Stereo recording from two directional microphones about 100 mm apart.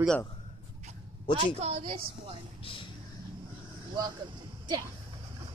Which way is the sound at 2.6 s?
60° left (ahead or behind).